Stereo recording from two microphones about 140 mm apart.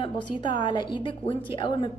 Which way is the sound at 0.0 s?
35° left (ahead or behind).